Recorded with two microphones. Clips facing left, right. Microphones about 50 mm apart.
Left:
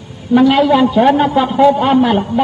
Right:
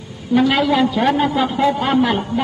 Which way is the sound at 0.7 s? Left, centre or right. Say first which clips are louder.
Left 6 dB; centre.